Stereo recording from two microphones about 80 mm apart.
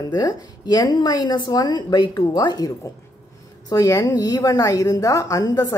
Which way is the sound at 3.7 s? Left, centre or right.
Left.